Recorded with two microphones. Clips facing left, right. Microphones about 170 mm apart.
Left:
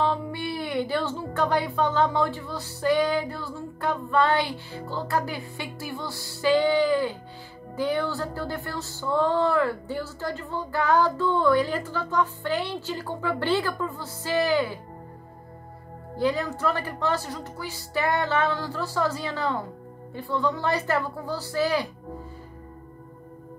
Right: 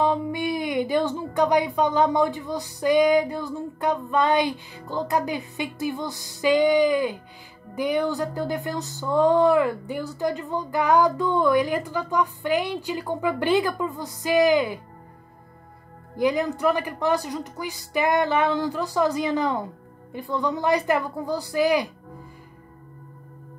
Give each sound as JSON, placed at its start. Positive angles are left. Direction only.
{"t": 0.0, "sound": "speech", "side_deg": -15}
{"t": 4.1, "sound": "music", "side_deg": -15}
{"t": 16.2, "sound": "music", "side_deg": -15}